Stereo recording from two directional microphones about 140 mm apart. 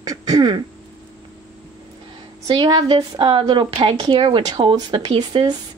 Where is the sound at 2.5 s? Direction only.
35° right (ahead or behind).